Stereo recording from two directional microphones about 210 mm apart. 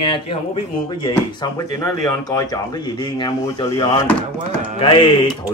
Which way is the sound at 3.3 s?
20° left (ahead or behind).